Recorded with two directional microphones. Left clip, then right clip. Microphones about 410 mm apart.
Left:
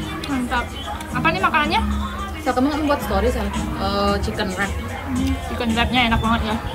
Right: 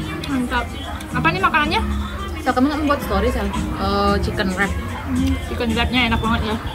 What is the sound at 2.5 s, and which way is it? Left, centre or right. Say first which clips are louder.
Speech: right 1 dB; centre.